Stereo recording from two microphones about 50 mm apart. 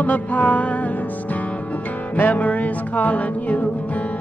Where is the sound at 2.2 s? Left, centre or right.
Left.